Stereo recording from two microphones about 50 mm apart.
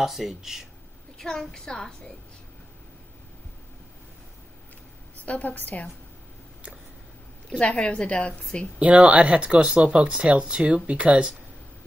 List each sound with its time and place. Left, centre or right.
0.0 s speech: centre
1.1 s a woman's voice: centre
5.2 s a woman's voice: left
7.4 s a woman's voice: left
8.7 s speech: right